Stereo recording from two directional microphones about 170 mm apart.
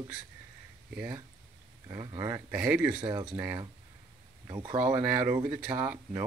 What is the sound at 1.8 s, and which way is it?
Speech, 25° right (ahead or behind).